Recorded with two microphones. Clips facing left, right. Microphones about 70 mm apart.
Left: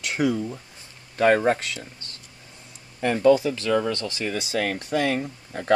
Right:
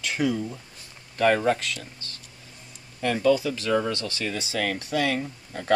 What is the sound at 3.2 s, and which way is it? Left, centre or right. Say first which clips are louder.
Speech: left 4 dB; left.